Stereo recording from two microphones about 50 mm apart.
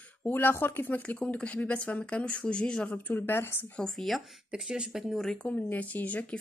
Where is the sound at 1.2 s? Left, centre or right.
Left.